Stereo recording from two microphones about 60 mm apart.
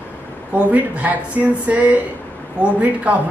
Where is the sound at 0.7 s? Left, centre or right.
Right.